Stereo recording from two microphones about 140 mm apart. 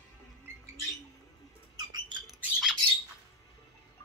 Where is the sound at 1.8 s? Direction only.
30° right (ahead or behind).